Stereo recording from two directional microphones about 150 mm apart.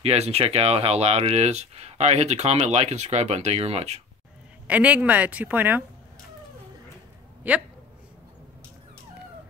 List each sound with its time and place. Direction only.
0.0 s speech: 45° right (ahead or behind)
4.6 s a woman's voice: 10° right (ahead or behind)
7.4 s a woman's voice: 10° right (ahead or behind)